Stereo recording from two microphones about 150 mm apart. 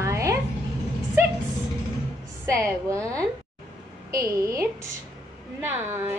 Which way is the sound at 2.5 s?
20° right (ahead or behind).